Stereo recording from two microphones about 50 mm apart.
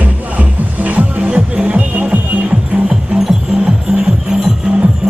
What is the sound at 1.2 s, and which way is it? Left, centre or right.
Music, right.